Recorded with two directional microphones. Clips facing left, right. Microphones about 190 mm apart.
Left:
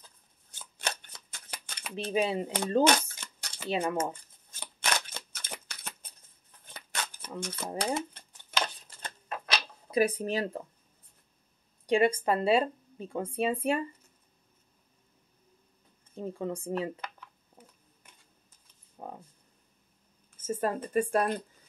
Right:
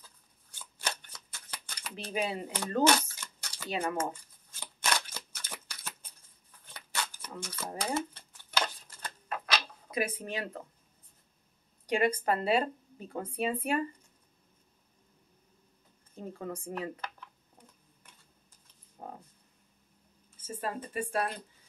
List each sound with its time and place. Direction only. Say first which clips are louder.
0.0 s scissors: left 1 dB; 20° left (ahead or behind)
5.1 s a sound: left 2 dB; 20° left (ahead or behind)
11.8 s a sound: left 4 dB; 25° left (ahead or behind)
12.3 s speech: left 3 dB; 30° left (ahead or behind)
16.3 s speech: left 5 dB; 25° left (ahead or behind)
20.4 s speech: left 6 dB; 45° left (ahead or behind)